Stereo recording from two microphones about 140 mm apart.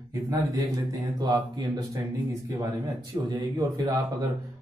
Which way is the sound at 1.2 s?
30° right (ahead or behind).